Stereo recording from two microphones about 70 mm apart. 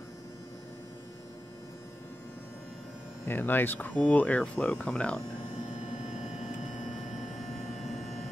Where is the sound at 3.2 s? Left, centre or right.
Left; by 5.2 s centre.